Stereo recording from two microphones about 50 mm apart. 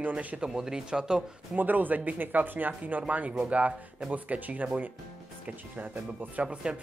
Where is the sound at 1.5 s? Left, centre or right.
Right.